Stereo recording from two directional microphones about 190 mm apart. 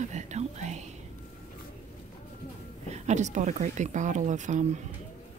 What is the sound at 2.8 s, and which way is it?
A woman's voice, 35° right (ahead or behind).